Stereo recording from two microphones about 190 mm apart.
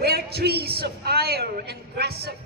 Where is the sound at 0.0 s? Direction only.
55° right (ahead or behind).